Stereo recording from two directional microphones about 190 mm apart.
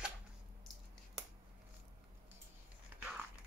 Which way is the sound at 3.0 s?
5° right (ahead or behind).